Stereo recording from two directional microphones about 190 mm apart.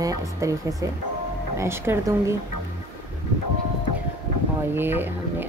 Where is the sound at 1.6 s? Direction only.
15° right (ahead or behind).